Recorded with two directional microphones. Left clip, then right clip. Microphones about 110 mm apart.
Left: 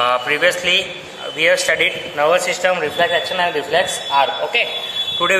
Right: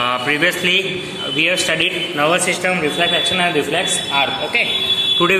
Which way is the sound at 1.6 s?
45° left (ahead or behind).